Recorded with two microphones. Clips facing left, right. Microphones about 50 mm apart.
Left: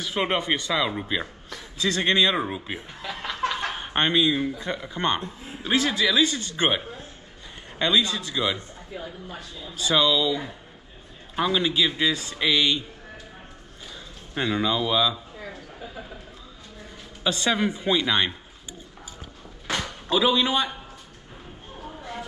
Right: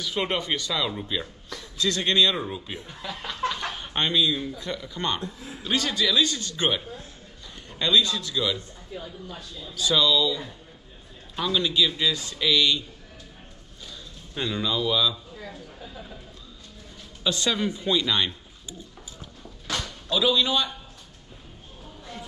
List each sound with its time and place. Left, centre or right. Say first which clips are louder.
0.0 s a man's voice: left 2 dB; left
7.8 s a man's voice: even; left
14.3 s a man's voice: left 3 dB; left
17.2 s a man's voice: left 2 dB; left
19.7 s speech: left 3 dB; left
21.8 s a sound: left 5 dB; left